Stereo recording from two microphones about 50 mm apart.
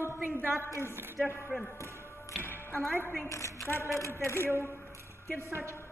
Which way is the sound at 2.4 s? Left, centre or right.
Left.